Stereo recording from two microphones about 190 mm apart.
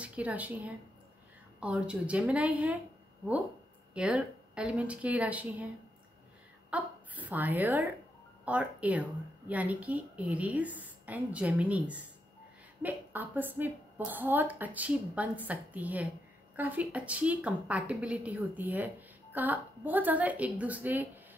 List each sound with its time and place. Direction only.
0.0 s a woman's voice: 5° right (ahead or behind)
3.9 s a woman's voice: 5° right (ahead or behind)
6.7 s a woman's voice: 10° right (ahead or behind)